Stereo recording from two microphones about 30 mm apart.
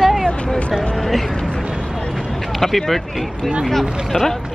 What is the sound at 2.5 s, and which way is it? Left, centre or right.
Speech, centre.